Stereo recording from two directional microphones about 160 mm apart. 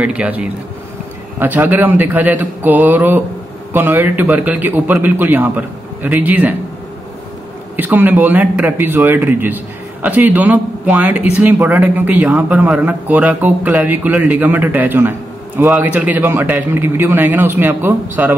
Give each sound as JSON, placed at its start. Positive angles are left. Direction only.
{"t": 0.0, "sound": "a man's voice", "side_deg": -10}
{"t": 7.7, "sound": "a man's voice", "side_deg": -10}